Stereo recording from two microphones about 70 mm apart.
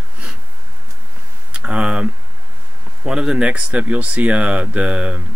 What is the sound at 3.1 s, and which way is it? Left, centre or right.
Speech, centre.